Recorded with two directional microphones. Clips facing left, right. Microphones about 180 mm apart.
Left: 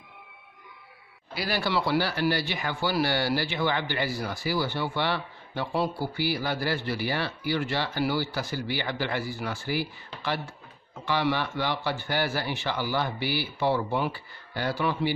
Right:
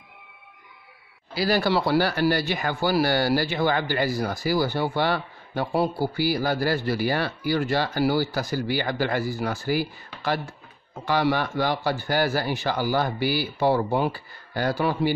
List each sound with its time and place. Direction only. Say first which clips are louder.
1.3 s speech: right 6 dB; 40° right (ahead or behind)